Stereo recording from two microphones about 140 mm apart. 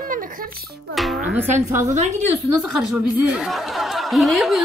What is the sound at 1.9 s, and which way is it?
Speech, 55° right (ahead or behind).